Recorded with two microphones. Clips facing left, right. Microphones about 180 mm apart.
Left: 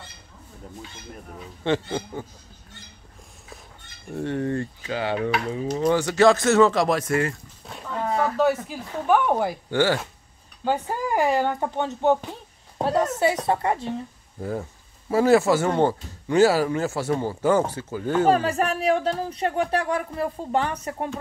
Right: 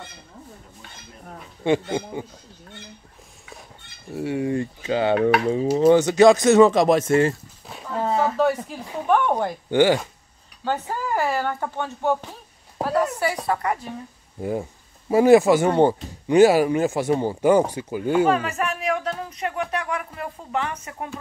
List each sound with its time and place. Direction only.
1.6 s speech: 10° right (ahead or behind)
4.1 s speech: 10° right (ahead or behind)
4.8 s speech: 25° right (ahead or behind)
7.6 s a sound: 5° right (ahead or behind)
8.0 s a sound: 25° right (ahead or behind)
8.4 s a woman's voice: centre (ahead or behind)
9.7 s speech: 15° right (ahead or behind)
10.6 s a woman's voice: 15° left (ahead or behind)
14.4 s speech: 15° right (ahead or behind)
18.3 s speech: 35° left (ahead or behind)